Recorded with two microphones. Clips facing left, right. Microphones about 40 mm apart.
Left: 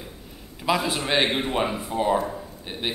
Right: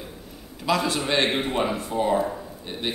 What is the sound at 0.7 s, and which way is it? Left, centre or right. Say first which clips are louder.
A man's voice: even; centre.